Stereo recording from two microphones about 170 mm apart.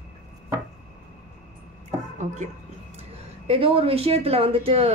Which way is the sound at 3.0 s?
35° right (ahead or behind).